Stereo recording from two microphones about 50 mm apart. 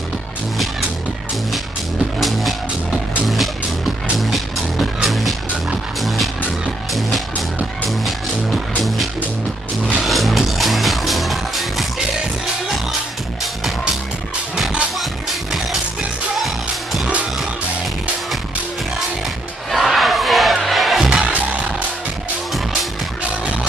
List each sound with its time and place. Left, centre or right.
2.1 s music: centre
15.0 s music: centre
19.7 s crowd: centre
21.2 s music: right